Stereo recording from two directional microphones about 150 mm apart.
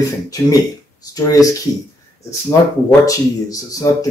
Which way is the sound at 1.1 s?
20° left (ahead or behind).